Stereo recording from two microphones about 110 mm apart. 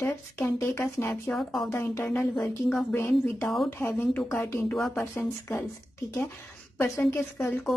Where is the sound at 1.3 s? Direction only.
Centre (ahead or behind).